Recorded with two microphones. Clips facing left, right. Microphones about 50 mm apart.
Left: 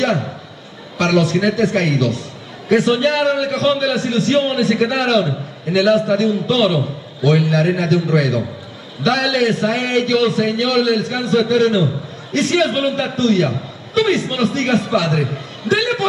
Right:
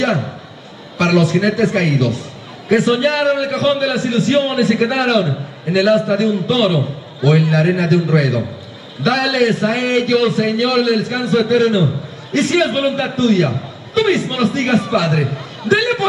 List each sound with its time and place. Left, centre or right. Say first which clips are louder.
0.9 s a man's voice: right 1 dB; centre